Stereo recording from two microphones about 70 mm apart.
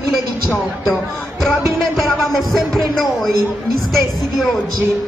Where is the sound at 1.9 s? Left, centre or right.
Centre.